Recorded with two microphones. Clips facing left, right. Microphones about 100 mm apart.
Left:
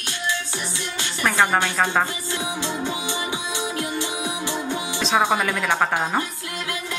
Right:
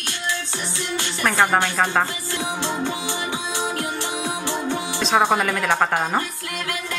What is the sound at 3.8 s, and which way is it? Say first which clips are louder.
Music: even; 15° left (ahead or behind).